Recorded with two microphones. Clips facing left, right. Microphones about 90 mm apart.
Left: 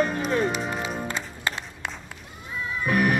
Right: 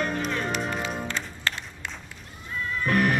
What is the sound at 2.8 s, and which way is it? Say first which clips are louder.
Music: left 1 dB; 10° left (ahead or behind).